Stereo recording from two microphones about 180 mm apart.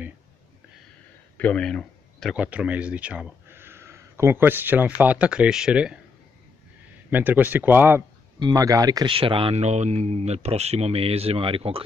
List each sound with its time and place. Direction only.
1.4 s speech: 5° left (ahead or behind)
7.1 s speech: 10° right (ahead or behind)
8.4 s a man's voice: 20° right (ahead or behind)